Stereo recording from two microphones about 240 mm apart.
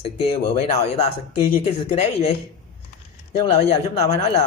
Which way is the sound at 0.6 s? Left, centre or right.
Left.